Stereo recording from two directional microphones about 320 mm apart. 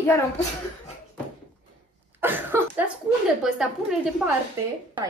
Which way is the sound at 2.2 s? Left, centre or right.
Centre.